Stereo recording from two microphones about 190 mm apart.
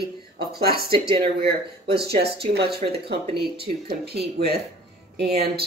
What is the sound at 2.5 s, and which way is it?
A woman's voice, 60° right (ahead or behind).